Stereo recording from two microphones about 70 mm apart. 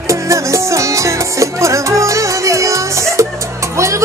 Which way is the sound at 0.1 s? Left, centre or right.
Right.